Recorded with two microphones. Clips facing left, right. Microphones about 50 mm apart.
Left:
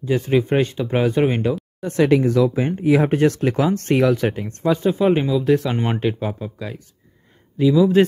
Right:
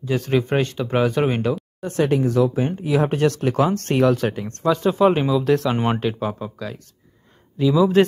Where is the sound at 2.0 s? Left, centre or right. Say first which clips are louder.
Left 3 dB; left.